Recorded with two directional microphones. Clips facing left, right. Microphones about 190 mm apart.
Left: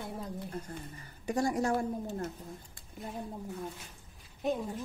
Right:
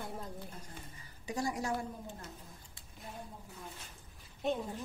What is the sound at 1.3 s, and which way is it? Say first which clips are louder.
A woman's voice: left 6 dB; 50° left (ahead or behind).